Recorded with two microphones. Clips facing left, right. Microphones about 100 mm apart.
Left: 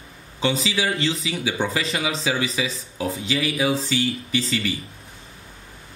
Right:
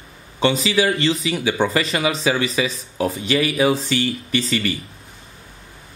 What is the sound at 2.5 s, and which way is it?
Speech, 80° right.